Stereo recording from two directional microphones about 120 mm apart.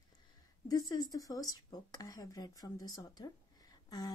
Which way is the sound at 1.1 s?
30° left (ahead or behind).